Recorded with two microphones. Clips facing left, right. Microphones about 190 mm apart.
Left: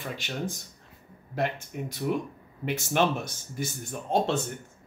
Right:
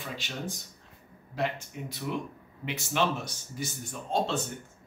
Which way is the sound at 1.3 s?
50° left (ahead or behind).